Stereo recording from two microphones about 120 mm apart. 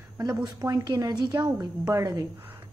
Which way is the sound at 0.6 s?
30° right (ahead or behind).